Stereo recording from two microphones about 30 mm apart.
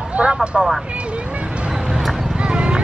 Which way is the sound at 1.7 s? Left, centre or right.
Right.